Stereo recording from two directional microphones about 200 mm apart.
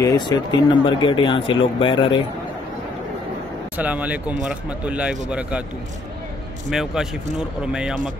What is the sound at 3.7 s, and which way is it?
Speech, 10° right (ahead or behind).